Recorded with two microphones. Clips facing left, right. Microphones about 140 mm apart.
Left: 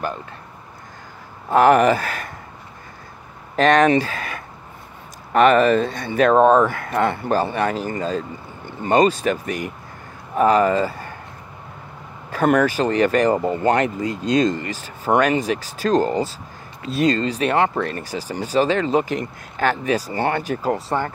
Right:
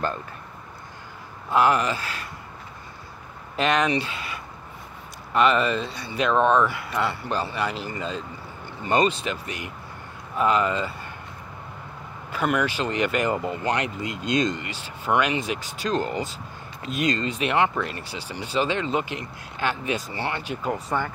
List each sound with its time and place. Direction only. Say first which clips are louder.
1.5 s speech: left 7 dB; 50° left (ahead or behind)
3.5 s speech: left 8 dB; 45° left (ahead or behind)
5.3 s speech: left 7 dB; 50° left (ahead or behind)
12.4 s speech: left 7 dB; 45° left (ahead or behind)
20.6 s speech: left 2 dB; 35° left (ahead or behind)